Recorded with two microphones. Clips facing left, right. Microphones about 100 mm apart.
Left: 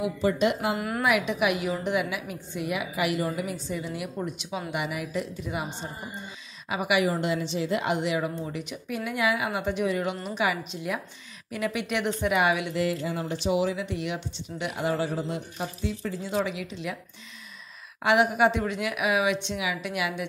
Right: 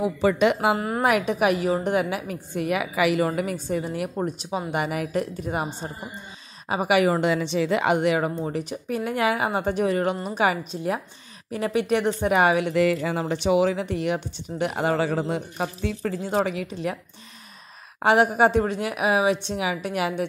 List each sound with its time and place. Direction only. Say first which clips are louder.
0.2 s speech: right 5 dB; 85° right
0.7 s a woman's voice: right 3 dB; 30° right (ahead or behind)
1.0 s a woman's voice: right 4 dB; 45° right (ahead or behind)
7.0 s a woman's voice: right 6 dB; 70° right (ahead or behind)
8.5 s a woman's voice: right 6 dB; 40° right (ahead or behind)
12.7 s speech: right 6 dB; 70° right (ahead or behind); by 15.0 s 50° right (ahead or behind)
15.0 s speech: right 5 dB; 70° right (ahead or behind); by 17.0 s 45° right (ahead or behind)
18.0 s a woman's voice: right 3 dB; 40° right (ahead or behind)